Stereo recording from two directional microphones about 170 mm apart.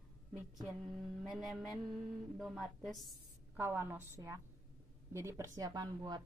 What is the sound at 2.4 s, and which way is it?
A woman's voice, centre (ahead or behind).